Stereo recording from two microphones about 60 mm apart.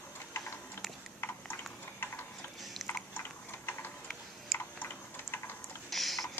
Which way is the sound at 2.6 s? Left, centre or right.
Centre.